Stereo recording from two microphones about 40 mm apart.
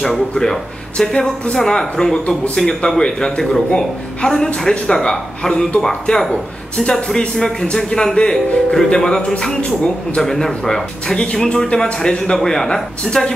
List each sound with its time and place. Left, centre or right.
0.3 s speech: centre
10.2 s speech: centre